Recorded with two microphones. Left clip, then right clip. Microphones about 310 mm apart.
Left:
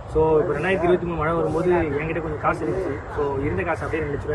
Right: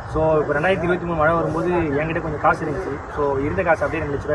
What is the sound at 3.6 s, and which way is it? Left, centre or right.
Speech, centre.